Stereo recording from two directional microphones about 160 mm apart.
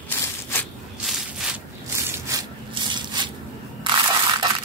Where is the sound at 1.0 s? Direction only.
Centre (ahead or behind).